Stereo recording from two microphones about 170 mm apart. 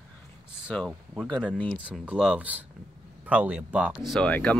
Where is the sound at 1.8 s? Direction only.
5° right (ahead or behind).